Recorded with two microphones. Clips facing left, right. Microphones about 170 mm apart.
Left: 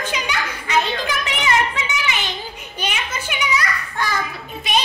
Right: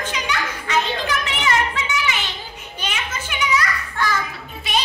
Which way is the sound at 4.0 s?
15° left (ahead or behind).